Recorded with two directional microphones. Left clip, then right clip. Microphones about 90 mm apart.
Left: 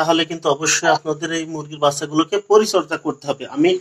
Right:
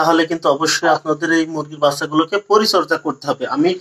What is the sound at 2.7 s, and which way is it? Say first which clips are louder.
Speech: right 4 dB; 40° right (ahead or behind).